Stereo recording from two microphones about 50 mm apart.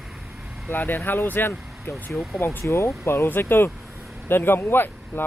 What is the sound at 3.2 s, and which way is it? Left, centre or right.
Speech, left.